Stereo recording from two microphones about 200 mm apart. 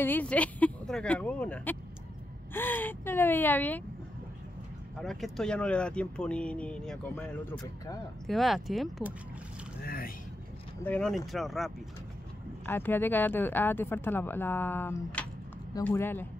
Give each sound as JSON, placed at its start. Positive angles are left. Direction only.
{"t": 0.0, "sound": "speech", "side_deg": 10}
{"t": 4.9, "sound": "speech", "side_deg": 0}
{"t": 7.6, "sound": "speech", "side_deg": 15}
{"t": 8.3, "sound": "speech", "side_deg": 0}
{"t": 9.8, "sound": "speech", "side_deg": 45}
{"t": 10.8, "sound": "speech", "side_deg": 5}